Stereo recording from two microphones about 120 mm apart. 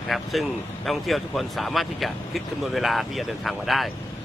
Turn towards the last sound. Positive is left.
turn(degrees=0)  # may be behind; listen again after turning